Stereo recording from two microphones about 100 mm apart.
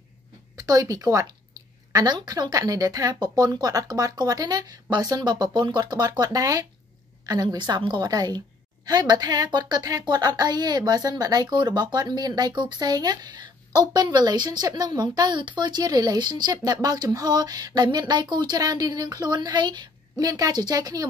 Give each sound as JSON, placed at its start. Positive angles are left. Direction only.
{"t": 0.6, "sound": "speech", "side_deg": -35}